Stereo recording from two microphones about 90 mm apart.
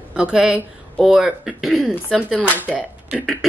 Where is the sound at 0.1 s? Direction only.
10° right (ahead or behind).